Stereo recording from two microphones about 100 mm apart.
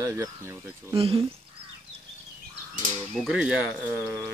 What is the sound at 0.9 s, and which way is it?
Speech, 75° right (ahead or behind).